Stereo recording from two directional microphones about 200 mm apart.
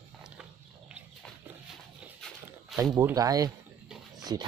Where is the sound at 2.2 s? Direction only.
Centre (ahead or behind).